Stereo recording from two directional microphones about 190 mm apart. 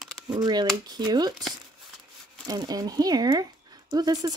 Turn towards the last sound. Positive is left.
turn(degrees=-20)  # may be behind; listen again after turning